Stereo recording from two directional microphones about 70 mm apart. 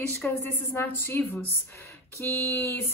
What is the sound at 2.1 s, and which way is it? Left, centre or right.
Speech, left.